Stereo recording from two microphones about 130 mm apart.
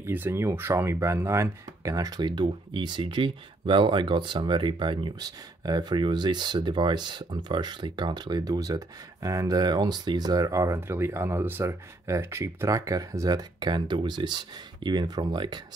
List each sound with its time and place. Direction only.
0.0 s speech: 20° right (ahead or behind); by 15.6 s 35° right (ahead or behind)